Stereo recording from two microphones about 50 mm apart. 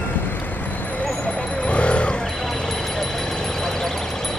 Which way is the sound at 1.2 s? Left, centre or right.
Left.